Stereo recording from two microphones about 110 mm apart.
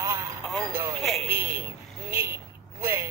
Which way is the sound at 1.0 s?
5° left (ahead or behind).